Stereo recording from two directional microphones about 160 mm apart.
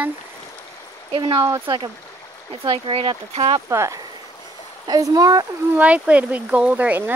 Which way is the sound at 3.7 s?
20° right (ahead or behind).